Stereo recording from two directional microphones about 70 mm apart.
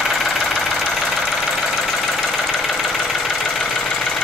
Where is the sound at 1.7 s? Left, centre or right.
Centre.